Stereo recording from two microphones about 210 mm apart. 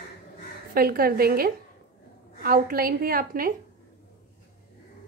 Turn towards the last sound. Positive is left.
turn(degrees=-45)  # may be behind; listen again after turning